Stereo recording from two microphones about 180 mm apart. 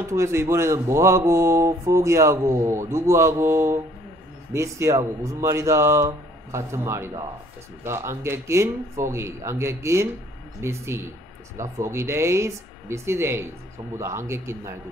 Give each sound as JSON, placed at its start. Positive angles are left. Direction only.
{"t": 0.1, "sound": "speech", "side_deg": -15}